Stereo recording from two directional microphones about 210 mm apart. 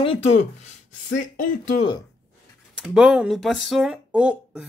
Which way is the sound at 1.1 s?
35° left (ahead or behind).